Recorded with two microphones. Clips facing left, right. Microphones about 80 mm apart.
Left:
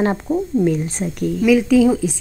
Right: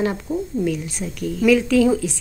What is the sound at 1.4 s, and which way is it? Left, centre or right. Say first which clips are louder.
Speech: left 2 dB; centre.